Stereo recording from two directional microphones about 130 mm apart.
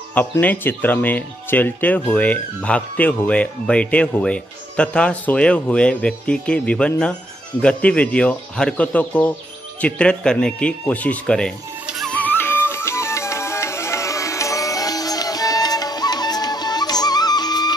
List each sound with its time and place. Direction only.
0.1 s speech: 15° left (ahead or behind)
12.0 s music: 10° left (ahead or behind); by 17.7 s 30° left (ahead or behind)